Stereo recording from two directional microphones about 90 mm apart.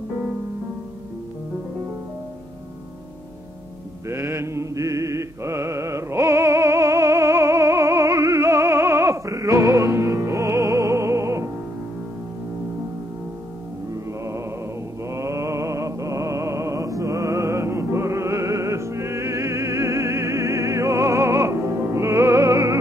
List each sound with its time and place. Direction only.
4.1 s music: 30° right (ahead or behind)
15.0 s music: 35° right (ahead or behind)